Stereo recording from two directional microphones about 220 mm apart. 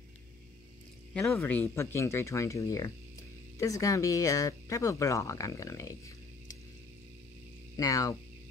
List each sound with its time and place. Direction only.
1.1 s speech: 5° left (ahead or behind)
7.7 s speech: 15° left (ahead or behind)